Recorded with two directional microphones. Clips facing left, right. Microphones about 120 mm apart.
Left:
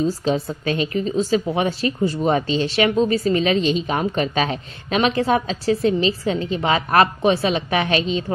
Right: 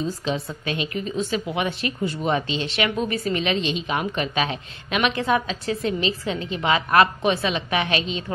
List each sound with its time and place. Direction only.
0.0 s a woman's voice: 40° left (ahead or behind)